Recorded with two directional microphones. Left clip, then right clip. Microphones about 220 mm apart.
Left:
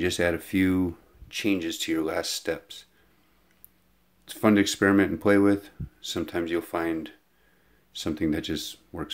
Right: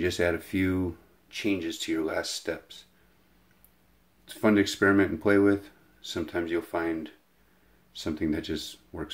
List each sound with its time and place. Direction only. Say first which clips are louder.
0.0 s speech: left 1 dB; 25° left (ahead or behind)
4.3 s speech: left 2 dB; 25° left (ahead or behind)